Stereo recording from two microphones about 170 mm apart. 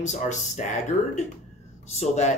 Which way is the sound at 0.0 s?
45° left (ahead or behind).